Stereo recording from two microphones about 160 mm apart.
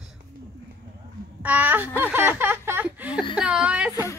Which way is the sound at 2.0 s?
10° right (ahead or behind).